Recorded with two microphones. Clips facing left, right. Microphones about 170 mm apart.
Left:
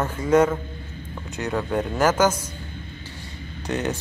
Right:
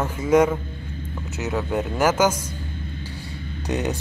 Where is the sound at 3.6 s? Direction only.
15° right (ahead or behind).